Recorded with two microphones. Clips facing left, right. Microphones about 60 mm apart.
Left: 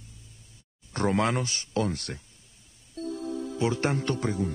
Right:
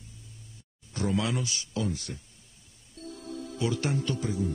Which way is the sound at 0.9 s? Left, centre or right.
Left.